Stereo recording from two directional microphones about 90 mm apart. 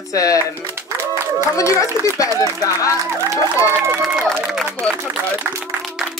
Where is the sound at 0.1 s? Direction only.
40° left (ahead or behind).